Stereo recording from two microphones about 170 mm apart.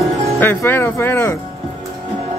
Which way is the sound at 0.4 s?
15° left (ahead or behind).